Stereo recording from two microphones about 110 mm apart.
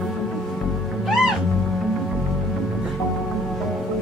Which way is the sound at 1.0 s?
5° right (ahead or behind).